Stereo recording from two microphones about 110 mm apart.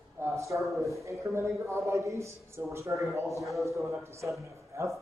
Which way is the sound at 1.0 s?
25° right (ahead or behind).